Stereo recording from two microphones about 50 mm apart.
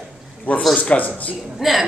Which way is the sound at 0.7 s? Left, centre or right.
Left.